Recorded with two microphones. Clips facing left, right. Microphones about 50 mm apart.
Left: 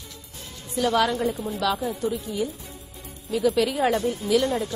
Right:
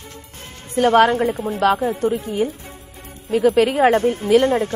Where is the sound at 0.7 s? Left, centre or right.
Right.